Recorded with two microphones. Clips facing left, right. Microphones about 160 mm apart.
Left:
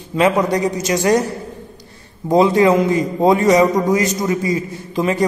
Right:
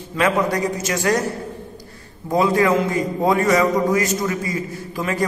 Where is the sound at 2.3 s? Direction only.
25° left (ahead or behind).